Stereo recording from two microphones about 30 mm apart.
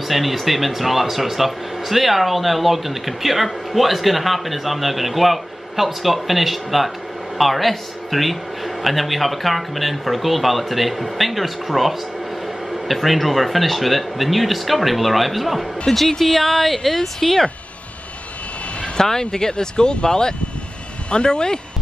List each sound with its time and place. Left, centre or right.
0.1 s a man's voice: centre
16.1 s a woman's voice: centre
18.9 s speech: left